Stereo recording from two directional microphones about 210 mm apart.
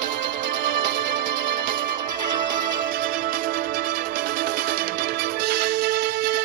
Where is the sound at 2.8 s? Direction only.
40° right (ahead or behind).